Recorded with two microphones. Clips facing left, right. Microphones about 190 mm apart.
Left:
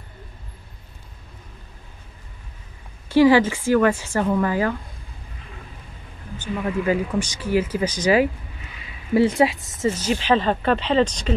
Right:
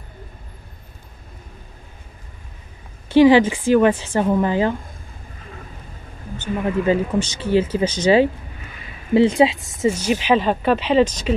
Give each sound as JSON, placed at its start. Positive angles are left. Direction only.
{"t": 3.1, "sound": "speech", "side_deg": -20}
{"t": 6.6, "sound": "speech", "side_deg": -30}